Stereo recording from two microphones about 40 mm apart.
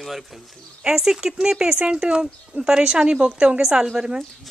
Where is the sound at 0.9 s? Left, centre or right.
Centre.